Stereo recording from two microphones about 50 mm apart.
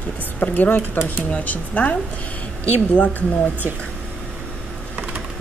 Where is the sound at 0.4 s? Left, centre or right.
Left.